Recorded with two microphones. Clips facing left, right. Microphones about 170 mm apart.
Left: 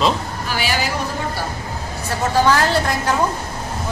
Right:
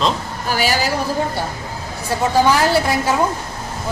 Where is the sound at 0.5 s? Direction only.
40° right (ahead or behind).